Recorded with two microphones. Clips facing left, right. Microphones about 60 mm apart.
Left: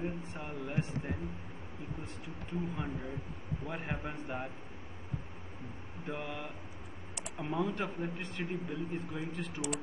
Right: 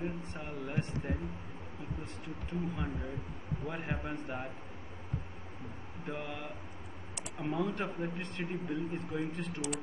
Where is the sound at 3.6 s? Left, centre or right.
Centre.